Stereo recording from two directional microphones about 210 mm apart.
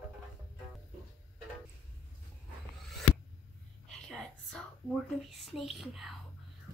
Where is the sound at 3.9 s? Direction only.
Centre (ahead or behind).